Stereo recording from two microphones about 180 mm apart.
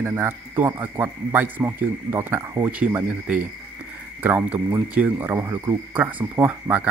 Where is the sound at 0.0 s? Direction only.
15° right (ahead or behind).